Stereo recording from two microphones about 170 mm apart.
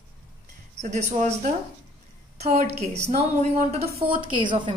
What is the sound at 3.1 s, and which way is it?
A woman's voice, 45° right (ahead or behind).